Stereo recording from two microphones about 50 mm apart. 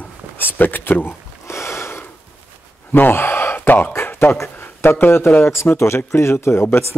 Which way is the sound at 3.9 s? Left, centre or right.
Left.